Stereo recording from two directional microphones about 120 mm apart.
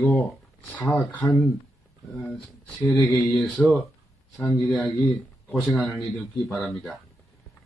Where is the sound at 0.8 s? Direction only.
10° left (ahead or behind).